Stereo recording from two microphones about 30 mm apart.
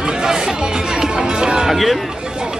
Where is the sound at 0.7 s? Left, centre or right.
Right.